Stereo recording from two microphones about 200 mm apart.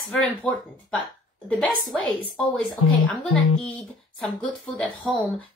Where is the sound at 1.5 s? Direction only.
5° left (ahead or behind).